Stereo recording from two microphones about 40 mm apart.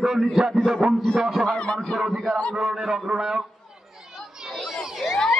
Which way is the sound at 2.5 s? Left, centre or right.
Centre.